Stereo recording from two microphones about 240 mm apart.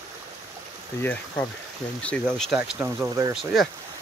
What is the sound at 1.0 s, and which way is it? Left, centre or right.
Speech, centre.